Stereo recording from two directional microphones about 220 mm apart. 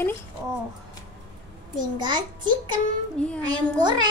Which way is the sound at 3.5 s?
20° right (ahead or behind).